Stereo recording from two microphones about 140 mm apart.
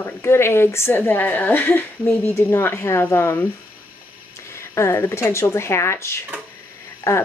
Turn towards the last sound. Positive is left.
turn(degrees=20)  # may be behind; listen again after turning